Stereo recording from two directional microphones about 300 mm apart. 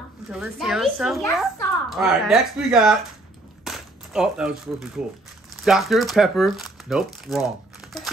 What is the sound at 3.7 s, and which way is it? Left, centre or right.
Cap gun, centre.